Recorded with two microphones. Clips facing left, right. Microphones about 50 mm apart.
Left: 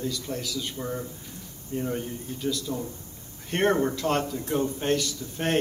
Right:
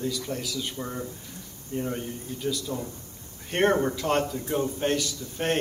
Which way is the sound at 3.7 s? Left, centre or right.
Centre.